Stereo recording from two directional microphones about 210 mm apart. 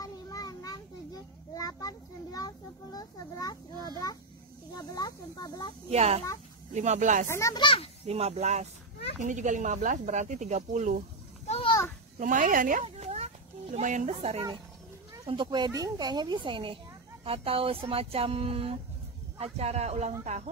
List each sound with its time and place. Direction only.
0.0 s children playing: 15° left (ahead or behind)
4.9 s speech: 15° left (ahead or behind)
5.9 s speech: 30° right (ahead or behind)
7.2 s a child's voice: 15° left (ahead or behind)
8.1 s speech: 30° right (ahead or behind)
11.4 s children playing: 30° left (ahead or behind)
12.2 s speech: 40° right (ahead or behind)
12.8 s a sound: 30° right (ahead or behind)
15.2 s speech: 20° right (ahead or behind)